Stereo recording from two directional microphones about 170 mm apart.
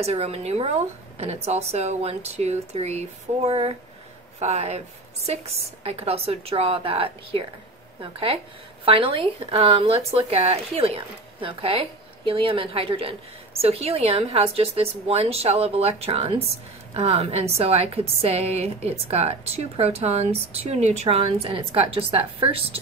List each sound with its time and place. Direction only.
0.0 s a woman's voice: 35° right (ahead or behind)